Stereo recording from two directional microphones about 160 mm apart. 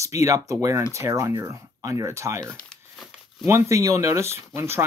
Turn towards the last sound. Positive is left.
turn(degrees=-15)  # may be behind; listen again after turning